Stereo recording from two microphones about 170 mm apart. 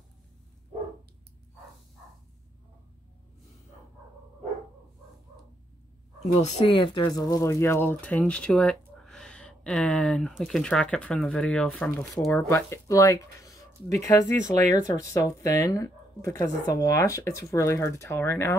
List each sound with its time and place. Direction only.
6.4 s speech: 40° left (ahead or behind); by 12.3 s centre (ahead or behind)
12.3 s speech: 15° left (ahead or behind)